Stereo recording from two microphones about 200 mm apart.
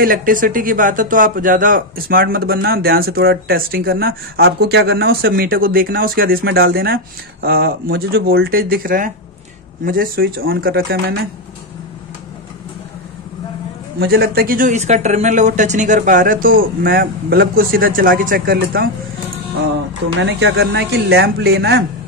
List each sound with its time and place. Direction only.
0.0 s speech: 45° right (ahead or behind)
13.9 s speech: 50° right (ahead or behind)
20.2 s speech: 60° right (ahead or behind)